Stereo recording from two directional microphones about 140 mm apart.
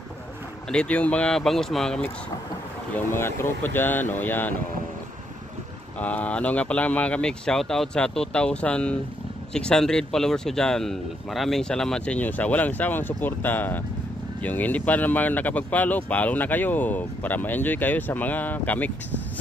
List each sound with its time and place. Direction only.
0.7 s speech: 5° left (ahead or behind)
3.1 s speech: 15° left (ahead or behind)
5.9 s speech: 10° left (ahead or behind)